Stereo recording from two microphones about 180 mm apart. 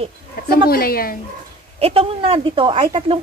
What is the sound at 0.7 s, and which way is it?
Speech, 55° left (ahead or behind).